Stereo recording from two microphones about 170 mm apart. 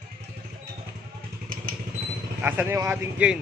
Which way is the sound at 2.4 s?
10° right (ahead or behind).